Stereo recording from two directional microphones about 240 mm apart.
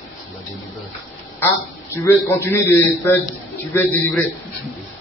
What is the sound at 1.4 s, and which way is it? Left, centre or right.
A woman's voice, centre.